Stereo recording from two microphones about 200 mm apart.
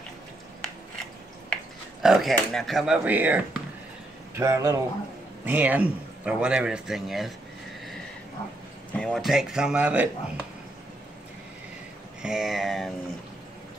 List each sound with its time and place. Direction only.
2.0 s speech: centre (ahead or behind)
8.9 s speech: 5° left (ahead or behind)
12.2 s speech: 5° right (ahead or behind)